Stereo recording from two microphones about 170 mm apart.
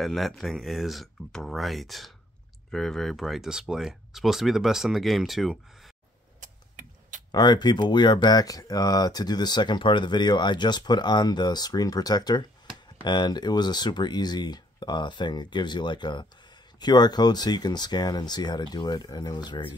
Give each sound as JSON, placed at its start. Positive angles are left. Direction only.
{"t": 0.0, "sound": "speech", "side_deg": 0}
{"t": 6.4, "sound": "a sound", "side_deg": -50}
{"t": 7.3, "sound": "speech", "side_deg": 25}